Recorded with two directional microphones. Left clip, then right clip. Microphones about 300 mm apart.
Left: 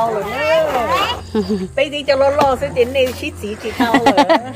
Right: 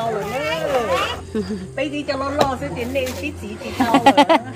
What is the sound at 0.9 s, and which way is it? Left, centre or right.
Speech, left.